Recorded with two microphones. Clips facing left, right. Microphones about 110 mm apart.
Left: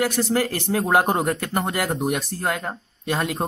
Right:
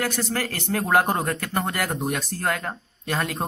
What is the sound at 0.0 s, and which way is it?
Speech, 20° left (ahead or behind).